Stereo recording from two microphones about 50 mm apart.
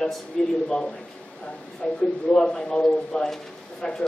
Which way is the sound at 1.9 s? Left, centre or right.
Centre.